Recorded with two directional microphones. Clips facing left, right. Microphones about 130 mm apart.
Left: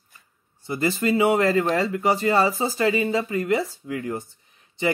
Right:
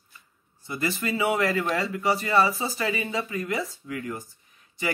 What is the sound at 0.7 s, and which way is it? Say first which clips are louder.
Speech: left 6 dB; 30° left (ahead or behind).